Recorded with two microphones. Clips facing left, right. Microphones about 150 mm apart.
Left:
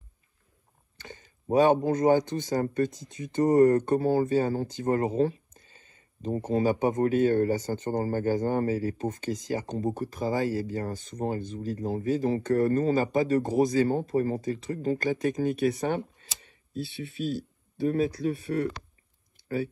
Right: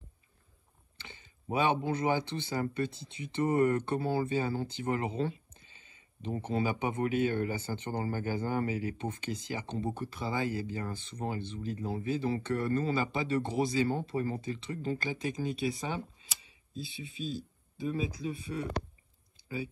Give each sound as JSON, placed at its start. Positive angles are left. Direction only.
{"t": 0.9, "sound": "speech", "side_deg": 45}
{"t": 6.5, "sound": "speech", "side_deg": 40}
{"t": 19.4, "sound": "a sound", "side_deg": 60}